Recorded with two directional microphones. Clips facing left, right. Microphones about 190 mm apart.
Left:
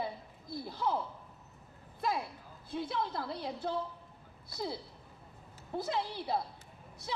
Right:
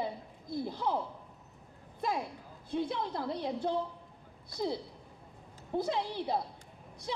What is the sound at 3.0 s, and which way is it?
Speech, 15° right (ahead or behind).